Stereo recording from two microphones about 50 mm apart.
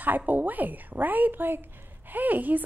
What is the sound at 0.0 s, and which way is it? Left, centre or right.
A woman's voice, right.